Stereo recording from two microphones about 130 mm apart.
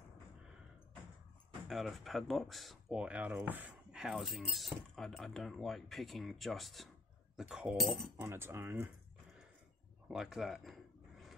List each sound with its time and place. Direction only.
1.7 s speech: centre (ahead or behind)
8.2 s speech: 20° right (ahead or behind)
10.0 s a sound: 5° right (ahead or behind)